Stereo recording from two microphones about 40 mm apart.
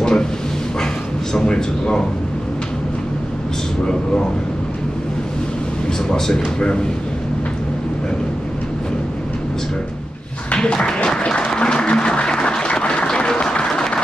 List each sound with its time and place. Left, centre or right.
0.0 s a sound: centre
1.5 s speech: centre
6.0 s speech: centre
10.6 s applause: left